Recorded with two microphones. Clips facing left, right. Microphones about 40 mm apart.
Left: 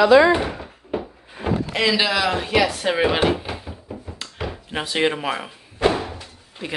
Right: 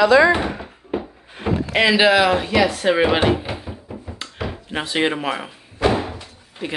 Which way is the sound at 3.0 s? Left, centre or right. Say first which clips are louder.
Left 1 dB; centre.